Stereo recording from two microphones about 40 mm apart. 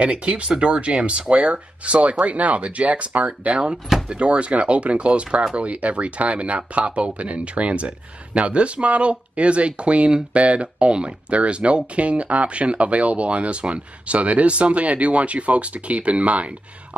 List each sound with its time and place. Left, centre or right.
0.0 s speech: right